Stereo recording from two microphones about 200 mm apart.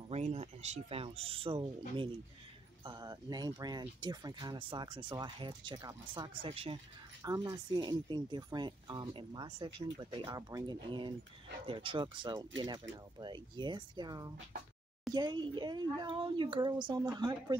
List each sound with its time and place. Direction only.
0.1 s speech: 30° right (ahead or behind)